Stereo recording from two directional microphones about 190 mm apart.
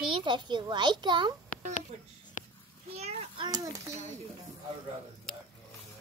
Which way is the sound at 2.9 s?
35° right (ahead or behind).